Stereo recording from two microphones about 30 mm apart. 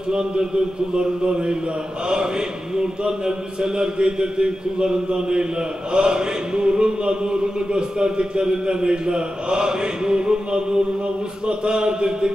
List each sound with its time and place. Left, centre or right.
0.9 s chant: right
2.8 s chant: right